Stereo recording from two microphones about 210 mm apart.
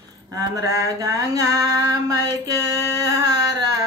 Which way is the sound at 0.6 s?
15° right (ahead or behind).